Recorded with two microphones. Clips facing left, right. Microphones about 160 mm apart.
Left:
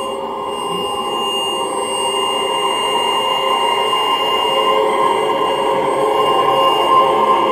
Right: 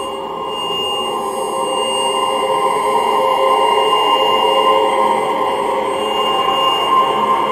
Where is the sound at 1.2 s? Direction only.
30° right (ahead or behind).